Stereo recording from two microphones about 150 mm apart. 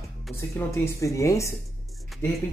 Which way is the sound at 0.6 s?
20° left (ahead or behind).